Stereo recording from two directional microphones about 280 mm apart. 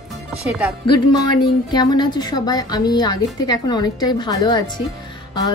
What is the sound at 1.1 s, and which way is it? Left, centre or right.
A woman's voice, centre.